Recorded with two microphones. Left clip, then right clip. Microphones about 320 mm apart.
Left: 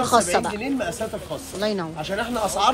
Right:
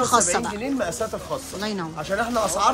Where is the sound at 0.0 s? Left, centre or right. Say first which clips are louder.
Left 1 dB; centre.